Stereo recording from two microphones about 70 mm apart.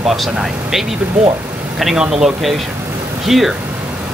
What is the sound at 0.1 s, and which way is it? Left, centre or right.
A man's voice, centre.